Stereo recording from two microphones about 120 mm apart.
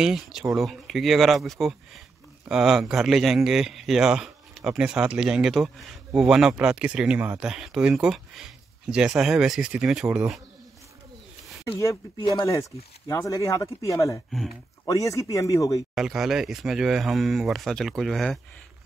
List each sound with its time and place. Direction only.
0.0 s speech: 5° right (ahead or behind)
12.2 s speech: 40° left (ahead or behind)
13.1 s speech: 25° left (ahead or behind)
15.9 s speech: 5° right (ahead or behind)